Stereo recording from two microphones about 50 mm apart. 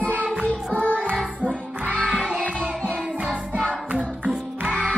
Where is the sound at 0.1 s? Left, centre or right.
Right.